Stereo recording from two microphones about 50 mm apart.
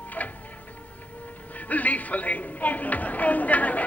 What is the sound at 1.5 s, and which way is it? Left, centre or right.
Music, left.